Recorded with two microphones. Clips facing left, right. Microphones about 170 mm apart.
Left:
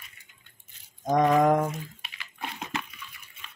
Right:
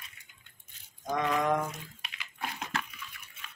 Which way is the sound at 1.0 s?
45° left (ahead or behind).